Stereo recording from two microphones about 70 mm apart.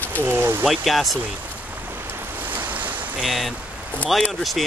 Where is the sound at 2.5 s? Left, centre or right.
Right.